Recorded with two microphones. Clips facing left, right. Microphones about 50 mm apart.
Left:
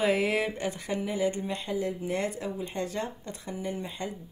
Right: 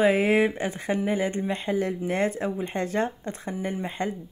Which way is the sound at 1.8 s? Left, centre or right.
Right.